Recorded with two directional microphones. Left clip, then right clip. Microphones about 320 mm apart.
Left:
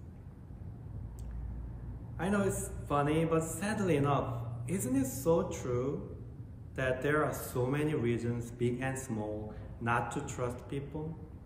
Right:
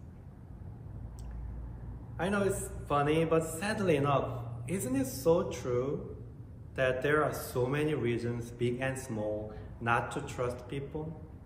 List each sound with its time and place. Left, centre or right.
2.1 s a man's voice: centre